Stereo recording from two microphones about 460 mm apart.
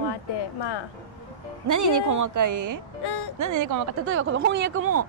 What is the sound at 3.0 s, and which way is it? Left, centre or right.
Music, left.